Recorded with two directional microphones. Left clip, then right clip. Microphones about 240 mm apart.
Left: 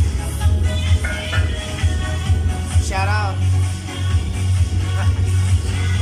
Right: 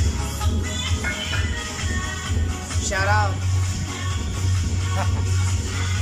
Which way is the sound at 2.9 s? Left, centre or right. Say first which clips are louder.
Right 1 dB; centre.